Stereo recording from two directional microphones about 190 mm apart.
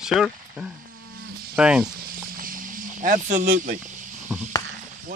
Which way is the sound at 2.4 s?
45° right (ahead or behind).